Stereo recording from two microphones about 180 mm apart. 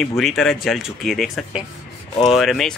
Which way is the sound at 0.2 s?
Centre (ahead or behind).